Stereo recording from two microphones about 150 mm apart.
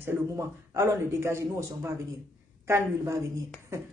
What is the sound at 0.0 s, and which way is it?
A man's voice, 20° right (ahead or behind).